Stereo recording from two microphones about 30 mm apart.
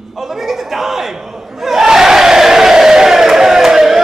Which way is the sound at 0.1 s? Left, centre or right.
Centre.